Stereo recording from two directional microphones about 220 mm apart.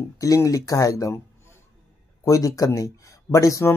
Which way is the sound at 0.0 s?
15° left (ahead or behind).